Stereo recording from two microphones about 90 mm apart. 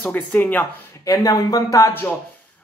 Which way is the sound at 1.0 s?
40° left (ahead or behind).